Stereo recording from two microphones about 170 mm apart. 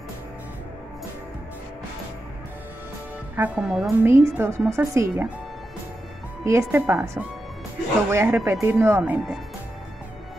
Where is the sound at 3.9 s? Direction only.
15° right (ahead or behind).